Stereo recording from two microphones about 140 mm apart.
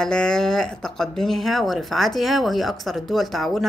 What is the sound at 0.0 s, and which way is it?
Speech, 5° left (ahead or behind).